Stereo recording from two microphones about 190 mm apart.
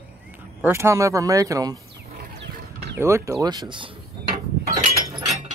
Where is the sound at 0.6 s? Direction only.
15° right (ahead or behind).